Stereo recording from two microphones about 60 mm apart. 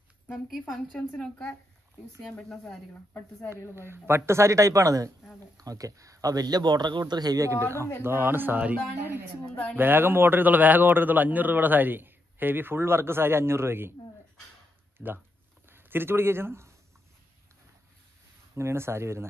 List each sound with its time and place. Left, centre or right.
0.9 s a woman's voice: centre
2.5 s speech: centre
3.7 s speech: right
5.6 s speech: right
8.0 s a man's voice: right
15.0 s speech: centre
15.7 s speech: right
18.5 s speech: right